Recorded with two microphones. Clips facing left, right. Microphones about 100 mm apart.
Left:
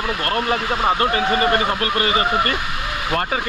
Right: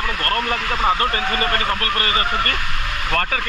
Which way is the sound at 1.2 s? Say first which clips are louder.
Left 3 dB; 25° left (ahead or behind).